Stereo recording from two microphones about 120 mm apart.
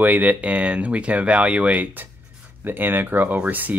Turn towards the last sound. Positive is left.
turn(degrees=-15)  # may be behind; listen again after turning